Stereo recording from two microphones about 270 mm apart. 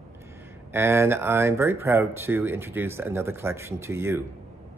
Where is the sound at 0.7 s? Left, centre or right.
Centre.